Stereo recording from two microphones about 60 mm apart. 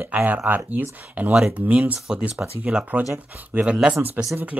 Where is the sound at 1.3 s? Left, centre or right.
Centre.